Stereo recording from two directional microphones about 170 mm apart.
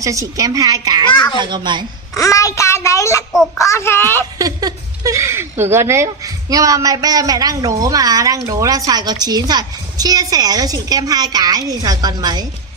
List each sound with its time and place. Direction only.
0.0 s speech: 20° right (ahead or behind)
2.1 s a child's voice: 20° left (ahead or behind)
4.4 s speech: 20° right (ahead or behind)